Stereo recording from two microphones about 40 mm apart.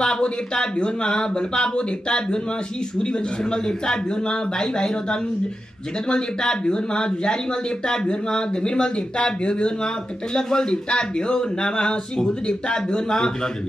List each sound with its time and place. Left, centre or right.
0.0 s speech: left